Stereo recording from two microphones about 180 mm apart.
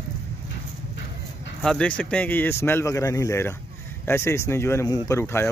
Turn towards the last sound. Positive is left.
turn(degrees=15)  # may be behind; listen again after turning